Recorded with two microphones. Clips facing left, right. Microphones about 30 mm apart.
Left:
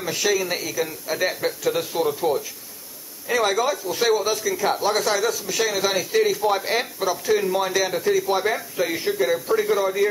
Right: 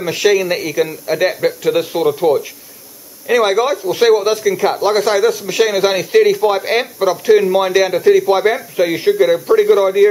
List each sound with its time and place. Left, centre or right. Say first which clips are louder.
0.0 s speech: right 9 dB; right